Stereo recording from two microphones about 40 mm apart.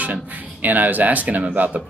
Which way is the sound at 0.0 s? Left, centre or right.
Right.